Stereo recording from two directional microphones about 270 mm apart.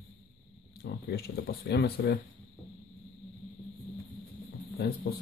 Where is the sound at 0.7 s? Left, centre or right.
Left.